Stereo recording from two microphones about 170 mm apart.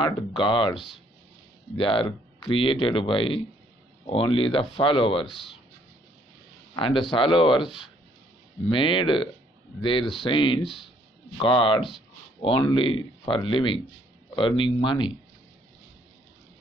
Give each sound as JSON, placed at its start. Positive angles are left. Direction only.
{"t": 0.0, "sound": "speech", "side_deg": 30}
{"t": 1.8, "sound": "speech", "side_deg": 30}
{"t": 6.7, "sound": "speech", "side_deg": 30}